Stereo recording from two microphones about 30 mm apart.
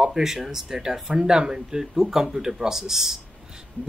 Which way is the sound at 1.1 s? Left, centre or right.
Right.